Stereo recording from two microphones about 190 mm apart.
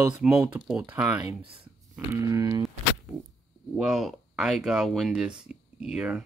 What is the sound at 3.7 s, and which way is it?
Speech, centre (ahead or behind).